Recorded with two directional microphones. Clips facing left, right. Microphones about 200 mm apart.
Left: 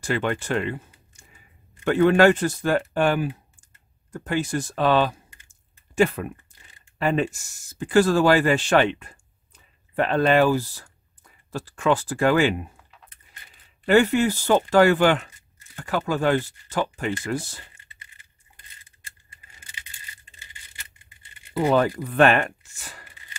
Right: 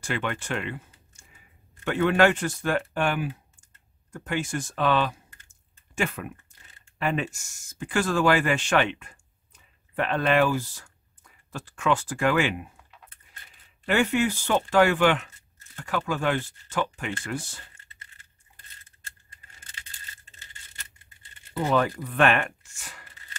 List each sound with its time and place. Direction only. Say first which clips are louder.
0.0 s speech: left 5 dB; 35° left (ahead or behind)
1.9 s speech: left 5 dB; 40° left (ahead or behind)
13.8 s speech: left 5 dB; 35° left (ahead or behind)
19.6 s a sound: left 1 dB; 10° left (ahead or behind)
21.6 s speech: left 4 dB; 35° left (ahead or behind)